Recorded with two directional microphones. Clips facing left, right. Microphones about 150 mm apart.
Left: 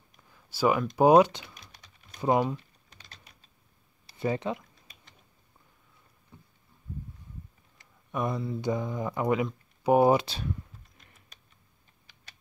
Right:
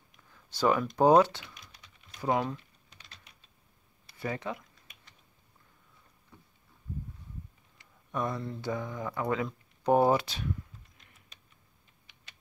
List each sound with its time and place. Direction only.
0.3 s speech: 10° left (ahead or behind)
1.5 s typing: 45° left (ahead or behind)
2.1 s speech: 20° left (ahead or behind)
2.9 s typing: 40° left (ahead or behind)
4.2 s speech: 25° left (ahead or behind)
8.1 s speech: 10° left (ahead or behind)
10.1 s speech: 30° left (ahead or behind)